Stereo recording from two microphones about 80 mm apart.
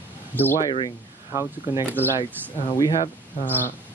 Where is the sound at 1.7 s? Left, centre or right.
Right.